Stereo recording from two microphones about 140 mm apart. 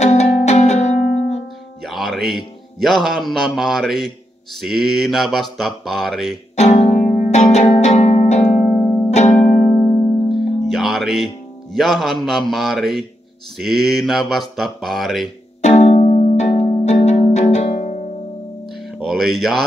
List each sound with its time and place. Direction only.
0.0 s music: 50° left (ahead or behind)
1.8 s a man's voice: centre (ahead or behind)
4.6 s mantra: centre (ahead or behind)
6.5 s music: 50° left (ahead or behind)
10.6 s music: centre (ahead or behind)
11.7 s mantra: centre (ahead or behind)
15.6 s music: 50° left (ahead or behind)
18.9 s speech: centre (ahead or behind)